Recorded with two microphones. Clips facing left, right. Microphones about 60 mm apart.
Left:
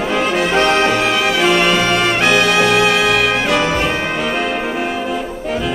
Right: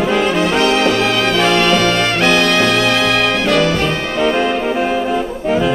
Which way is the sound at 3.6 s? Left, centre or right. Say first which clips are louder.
Right 1 dB; centre.